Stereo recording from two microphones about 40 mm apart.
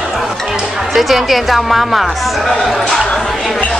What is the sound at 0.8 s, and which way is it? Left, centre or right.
A woman's voice, centre.